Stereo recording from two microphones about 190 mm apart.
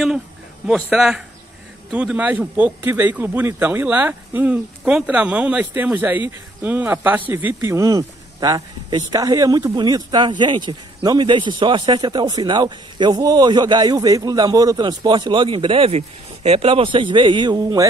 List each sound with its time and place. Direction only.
0.7 s a man's voice: 5° right (ahead or behind); by 17.8 s 20° right (ahead or behind)